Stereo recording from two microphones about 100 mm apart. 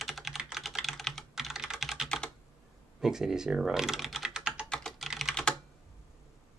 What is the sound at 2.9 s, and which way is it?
Speech, 5° right (ahead or behind).